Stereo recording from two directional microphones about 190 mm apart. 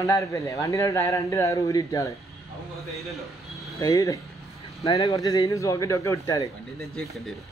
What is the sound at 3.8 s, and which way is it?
A man's voice, 15° left (ahead or behind).